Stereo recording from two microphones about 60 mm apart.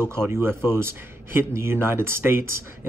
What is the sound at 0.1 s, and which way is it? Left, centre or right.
Speech, right.